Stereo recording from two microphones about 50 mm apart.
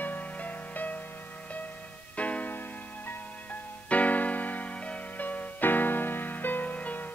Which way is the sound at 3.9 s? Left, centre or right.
Left.